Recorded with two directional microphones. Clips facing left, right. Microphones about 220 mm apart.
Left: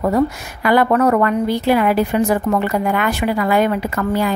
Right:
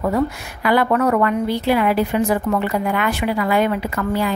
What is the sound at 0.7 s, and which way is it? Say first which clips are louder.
A woman's voice: left 3 dB; 45° left (ahead or behind).